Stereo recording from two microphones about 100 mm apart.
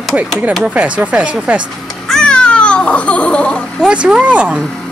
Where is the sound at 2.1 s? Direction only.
5° left (ahead or behind).